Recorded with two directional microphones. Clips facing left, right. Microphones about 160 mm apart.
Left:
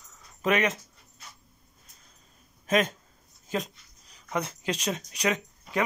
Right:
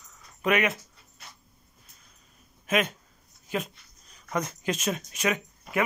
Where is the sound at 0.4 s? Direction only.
Centre (ahead or behind).